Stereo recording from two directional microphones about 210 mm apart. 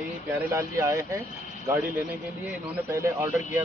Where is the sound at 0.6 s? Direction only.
15° right (ahead or behind).